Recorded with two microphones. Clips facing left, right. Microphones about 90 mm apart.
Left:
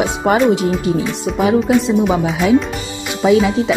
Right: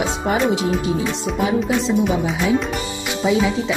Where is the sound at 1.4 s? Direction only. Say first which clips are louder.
Left 7 dB; 65° left (ahead or behind).